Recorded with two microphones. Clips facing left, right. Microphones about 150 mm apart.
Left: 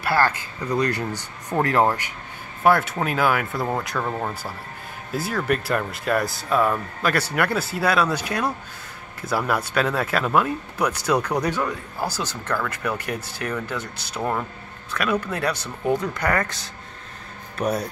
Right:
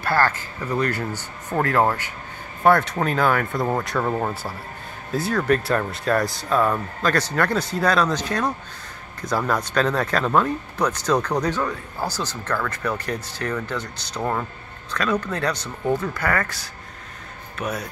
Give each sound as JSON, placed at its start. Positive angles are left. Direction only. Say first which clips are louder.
{"t": 0.0, "sound": "speech", "louder": "even", "side_deg": 10}
{"t": 5.1, "sound": "speech", "louder": "right 3 dB", "side_deg": 5}
{"t": 17.6, "sound": "speech", "louder": "left 4 dB", "side_deg": 35}